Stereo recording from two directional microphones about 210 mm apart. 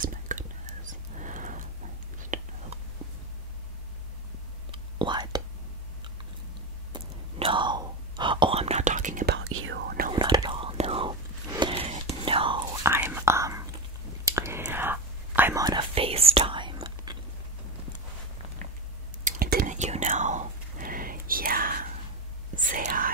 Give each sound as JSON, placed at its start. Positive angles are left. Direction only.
{"t": 0.0, "sound": "whispering", "side_deg": -40}
{"t": 4.6, "sound": "whispering", "side_deg": -20}
{"t": 6.9, "sound": "whispering", "side_deg": -25}
{"t": 9.4, "sound": "whispering", "side_deg": -80}
{"t": 9.8, "sound": "whispering", "side_deg": -45}
{"t": 10.1, "sound": "whispering", "side_deg": -20}
{"t": 12.9, "sound": "whispering", "side_deg": -10}
{"t": 15.9, "sound": "whispering", "side_deg": -30}
{"t": 19.2, "sound": "whispering", "side_deg": -45}